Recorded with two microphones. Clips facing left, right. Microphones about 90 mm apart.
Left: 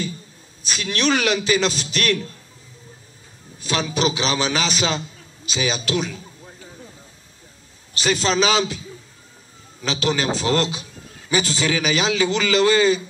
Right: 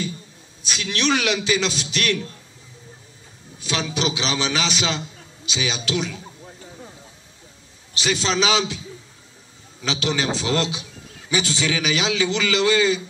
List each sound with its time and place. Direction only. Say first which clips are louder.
0.7 s a man's voice: left 1 dB; 45° left (ahead or behind)
3.5 s a man's voice: left 2 dB; 45° left (ahead or behind)
7.9 s a man's voice: left 2 dB; 45° left (ahead or behind)